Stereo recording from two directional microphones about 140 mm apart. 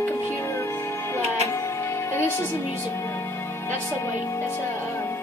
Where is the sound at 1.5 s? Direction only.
20° left (ahead or behind).